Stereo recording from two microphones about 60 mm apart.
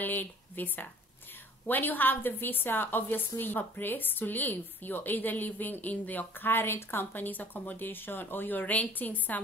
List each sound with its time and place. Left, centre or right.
0.0 s a woman's voice: left